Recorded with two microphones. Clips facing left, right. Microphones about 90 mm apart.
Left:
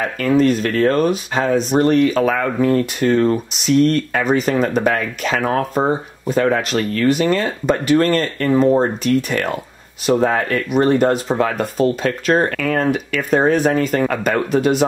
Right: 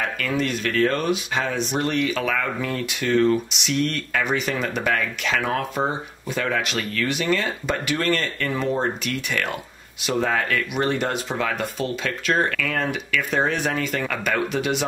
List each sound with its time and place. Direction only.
0.2 s speech: 40° left (ahead or behind)